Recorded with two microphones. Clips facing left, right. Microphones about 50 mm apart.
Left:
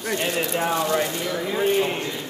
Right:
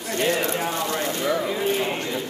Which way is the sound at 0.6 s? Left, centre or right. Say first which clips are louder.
Left 4 dB; left.